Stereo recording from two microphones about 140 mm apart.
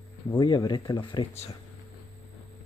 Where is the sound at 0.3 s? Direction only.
30° left (ahead or behind).